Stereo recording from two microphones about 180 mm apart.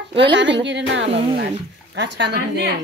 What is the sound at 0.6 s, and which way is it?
A woman's voice, 75° right (ahead or behind).